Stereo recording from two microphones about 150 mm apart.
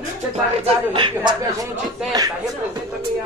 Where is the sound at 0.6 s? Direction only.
35° right (ahead or behind).